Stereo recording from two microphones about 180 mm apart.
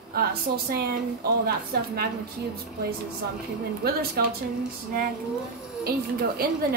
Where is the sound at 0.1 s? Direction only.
60° right (ahead or behind).